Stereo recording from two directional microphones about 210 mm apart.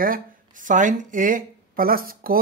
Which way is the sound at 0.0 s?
40° right (ahead or behind).